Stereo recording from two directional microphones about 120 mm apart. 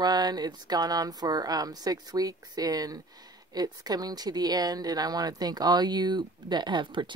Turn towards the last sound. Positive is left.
turn(degrees=-40)  # may be behind; listen again after turning